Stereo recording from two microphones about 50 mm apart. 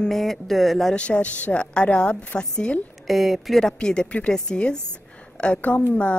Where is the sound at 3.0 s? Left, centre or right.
Centre.